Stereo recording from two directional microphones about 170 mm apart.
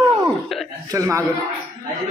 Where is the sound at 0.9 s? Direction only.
20° right (ahead or behind).